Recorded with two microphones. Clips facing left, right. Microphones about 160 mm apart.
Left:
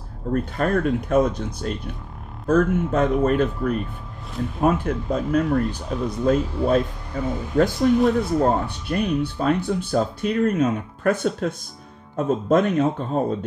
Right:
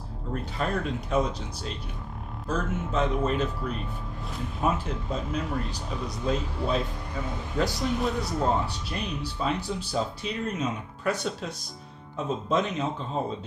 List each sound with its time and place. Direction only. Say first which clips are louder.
0.3 s speech: left 8 dB; 50° left (ahead or behind)